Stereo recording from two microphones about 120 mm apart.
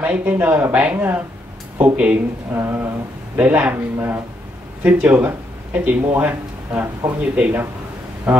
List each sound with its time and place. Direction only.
0.0 s speech: 15° right (ahead or behind)
2.5 s a sound: 20° right (ahead or behind)
3.3 s speech: 10° right (ahead or behind)